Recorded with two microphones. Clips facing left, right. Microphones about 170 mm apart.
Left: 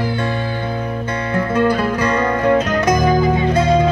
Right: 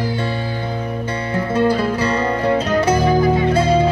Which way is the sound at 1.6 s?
30° right (ahead or behind).